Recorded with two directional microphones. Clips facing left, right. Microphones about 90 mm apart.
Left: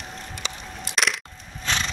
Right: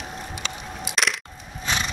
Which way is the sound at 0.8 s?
Centre (ahead or behind).